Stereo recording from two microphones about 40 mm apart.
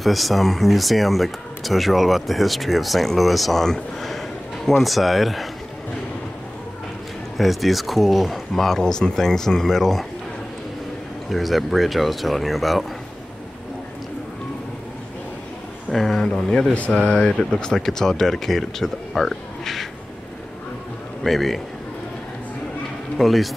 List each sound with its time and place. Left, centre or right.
0.0 s speech: centre
4.8 s speech: centre
7.3 s speech: centre
8.6 s speech: centre
11.2 s speech: centre
15.9 s a sound: centre
16.3 s speech: centre
16.7 s speech: left
17.1 s speech: left; by 19.9 s centre
21.2 s speech: centre
23.1 s speech: centre